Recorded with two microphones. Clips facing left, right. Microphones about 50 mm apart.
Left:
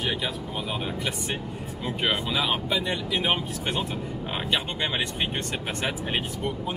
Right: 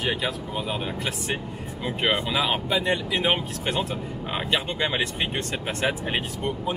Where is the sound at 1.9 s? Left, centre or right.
Right.